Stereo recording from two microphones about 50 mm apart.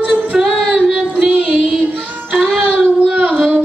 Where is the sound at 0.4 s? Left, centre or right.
Centre.